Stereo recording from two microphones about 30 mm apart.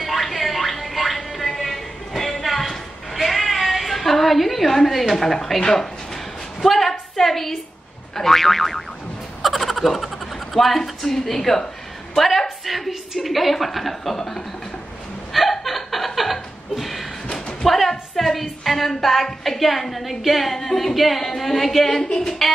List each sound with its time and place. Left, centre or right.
0.0 s music: centre
2.4 s a sound: centre
5.2 s a woman's voice: centre
5.7 s a sound: centre
7.2 s a woman's voice: centre
9.4 s a sound: centre
10.8 s a woman's voice: centre
14.1 s a woman's voice: centre
15.3 s chuckle: centre
17.3 s a sound: left
17.6 s a woman's voice: centre
21.9 s speech: left